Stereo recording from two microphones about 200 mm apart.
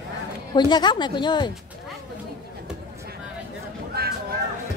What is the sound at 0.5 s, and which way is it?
Speech, 20° left (ahead or behind).